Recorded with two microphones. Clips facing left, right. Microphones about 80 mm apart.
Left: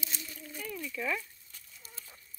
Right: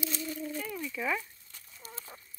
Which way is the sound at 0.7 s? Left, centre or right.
Right.